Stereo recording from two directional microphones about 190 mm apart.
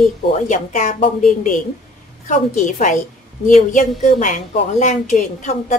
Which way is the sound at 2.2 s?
40° left (ahead or behind).